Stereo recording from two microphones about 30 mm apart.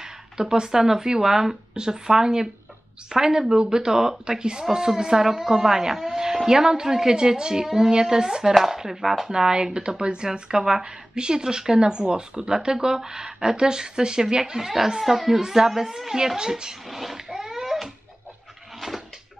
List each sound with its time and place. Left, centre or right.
0.0 s a child's voice: right
16.9 s a child's voice: centre
17.3 s a sound: centre